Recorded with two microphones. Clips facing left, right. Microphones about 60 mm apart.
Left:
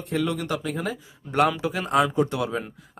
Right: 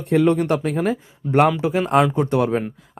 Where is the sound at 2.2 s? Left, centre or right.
Right.